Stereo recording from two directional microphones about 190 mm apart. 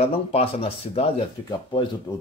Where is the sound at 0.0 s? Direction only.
30° left (ahead or behind).